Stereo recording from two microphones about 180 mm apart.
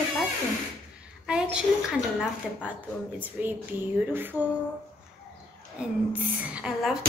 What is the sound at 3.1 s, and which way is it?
Speech, 10° right (ahead or behind).